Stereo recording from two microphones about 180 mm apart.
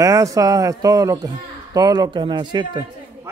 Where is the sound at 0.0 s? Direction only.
20° right (ahead or behind).